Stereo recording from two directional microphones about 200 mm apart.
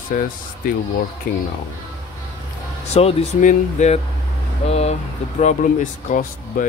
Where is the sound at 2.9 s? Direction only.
30° left (ahead or behind).